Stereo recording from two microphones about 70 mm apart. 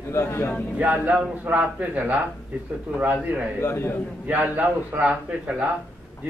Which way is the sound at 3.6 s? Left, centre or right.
Left.